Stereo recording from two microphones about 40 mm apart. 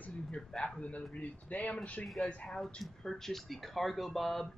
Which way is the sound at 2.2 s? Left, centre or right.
Left.